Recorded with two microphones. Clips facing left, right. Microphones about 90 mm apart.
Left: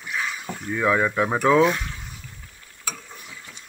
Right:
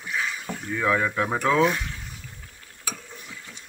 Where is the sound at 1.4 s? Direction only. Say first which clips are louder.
Left 4 dB; 10° left (ahead or behind).